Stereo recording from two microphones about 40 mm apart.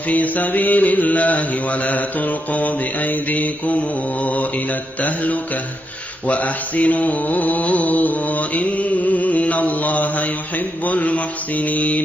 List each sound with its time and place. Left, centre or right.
0.1 s mantra: left